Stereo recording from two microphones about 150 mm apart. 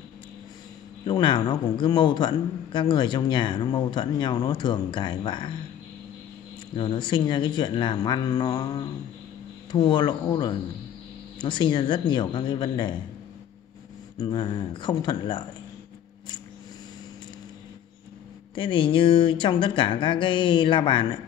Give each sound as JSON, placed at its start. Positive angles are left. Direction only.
{"t": 1.0, "sound": "a man's voice", "side_deg": 30}
{"t": 6.8, "sound": "a man's voice", "side_deg": 30}
{"t": 14.1, "sound": "a man's voice", "side_deg": 30}
{"t": 18.5, "sound": "a man's voice", "side_deg": 35}